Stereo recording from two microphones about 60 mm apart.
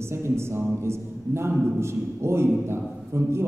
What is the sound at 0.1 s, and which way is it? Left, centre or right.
A man's voice, right.